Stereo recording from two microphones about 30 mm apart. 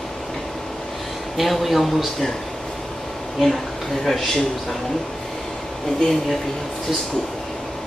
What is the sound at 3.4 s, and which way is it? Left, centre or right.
Speech, centre.